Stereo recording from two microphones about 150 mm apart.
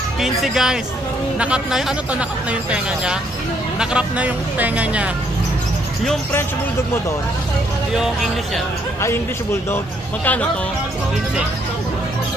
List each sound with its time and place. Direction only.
0.2 s speech: 5° right (ahead or behind)
3.8 s speech: 10° right (ahead or behind)
9.0 s speech: 15° left (ahead or behind)